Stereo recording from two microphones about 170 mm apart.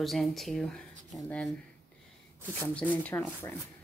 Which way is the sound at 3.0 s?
10° left (ahead or behind).